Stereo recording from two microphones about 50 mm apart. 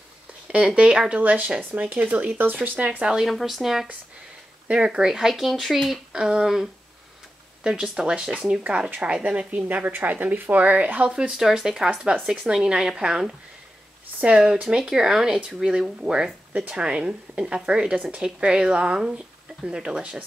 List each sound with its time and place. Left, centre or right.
0.5 s speech: right
2.0 s speech: right
3.0 s speech: centre
3.3 s speech: centre
4.6 s speech: centre
6.1 s speech: centre
9.7 s speech: right
11.1 s speech: centre